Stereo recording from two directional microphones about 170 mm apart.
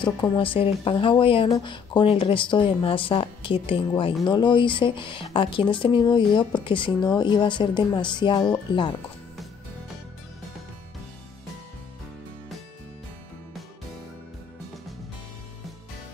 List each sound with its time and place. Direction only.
0.0 s speech: 30° left (ahead or behind)